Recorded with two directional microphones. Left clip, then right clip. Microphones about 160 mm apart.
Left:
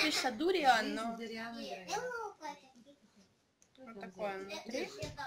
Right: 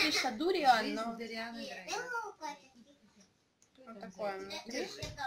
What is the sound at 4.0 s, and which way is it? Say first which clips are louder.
Speech: right 1 dB; centre (ahead or behind).